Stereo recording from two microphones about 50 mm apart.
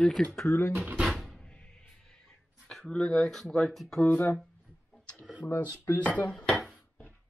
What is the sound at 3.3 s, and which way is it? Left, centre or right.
Speech, centre.